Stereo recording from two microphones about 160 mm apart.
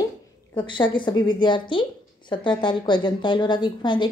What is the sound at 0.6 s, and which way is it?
A woman's voice, 30° left (ahead or behind).